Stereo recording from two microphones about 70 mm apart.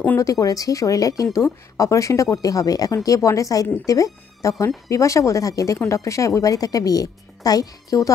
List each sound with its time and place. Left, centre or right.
0.2 s a woman's voice: left